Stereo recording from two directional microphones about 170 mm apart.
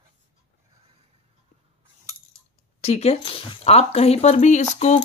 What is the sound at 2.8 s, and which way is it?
Speech, 40° left (ahead or behind).